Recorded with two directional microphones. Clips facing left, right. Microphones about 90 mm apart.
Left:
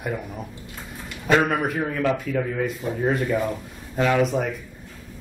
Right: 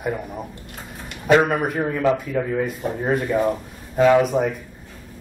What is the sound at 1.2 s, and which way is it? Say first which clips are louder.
Speech: right 3 dB; 5° right (ahead or behind).